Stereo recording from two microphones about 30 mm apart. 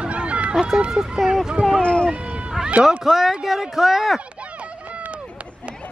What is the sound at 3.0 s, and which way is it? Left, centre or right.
Speech, centre.